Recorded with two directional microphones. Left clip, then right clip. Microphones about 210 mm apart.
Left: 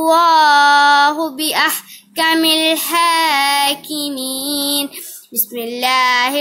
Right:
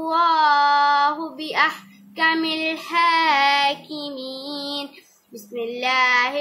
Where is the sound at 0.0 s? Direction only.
50° left (ahead or behind).